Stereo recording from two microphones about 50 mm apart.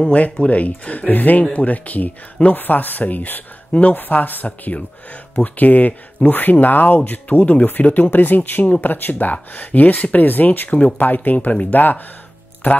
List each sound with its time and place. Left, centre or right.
0.0 s speech: left